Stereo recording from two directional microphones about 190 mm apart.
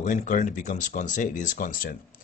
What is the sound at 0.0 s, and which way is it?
A man's voice, 40° left (ahead or behind).